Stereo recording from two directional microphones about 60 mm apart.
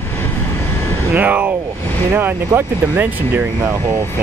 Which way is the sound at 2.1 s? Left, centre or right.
Right.